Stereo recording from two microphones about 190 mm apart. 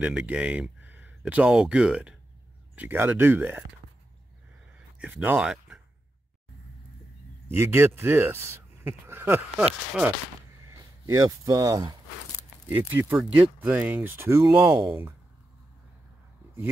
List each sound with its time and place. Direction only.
0.0 s speech: 5° right (ahead or behind)
4.9 s speech: 5° right (ahead or behind)
7.4 s speech: 15° right (ahead or behind)
10.7 s speech: 15° right (ahead or behind)
12.4 s speech: 10° right (ahead or behind)